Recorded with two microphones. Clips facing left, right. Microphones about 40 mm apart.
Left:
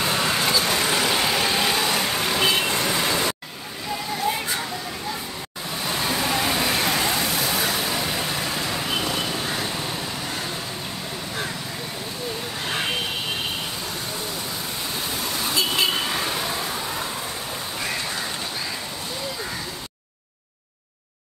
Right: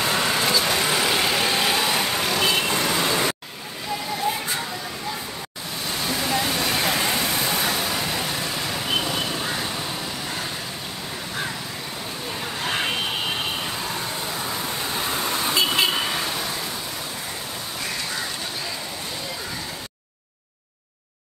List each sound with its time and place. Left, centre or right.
0.0 s vehicle: centre
6.0 s vehicle: centre
7.7 s vehicle: centre
8.9 s a sound: centre
15.2 s vehicle: right
16.0 s vehicle: centre
16.3 s vehicle: centre